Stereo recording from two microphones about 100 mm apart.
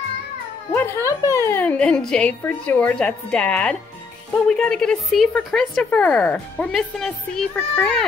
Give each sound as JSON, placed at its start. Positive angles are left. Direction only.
{"t": 0.7, "sound": "speech", "side_deg": 25}
{"t": 1.6, "sound": "a woman's voice", "side_deg": 15}
{"t": 7.5, "sound": "speech", "side_deg": 20}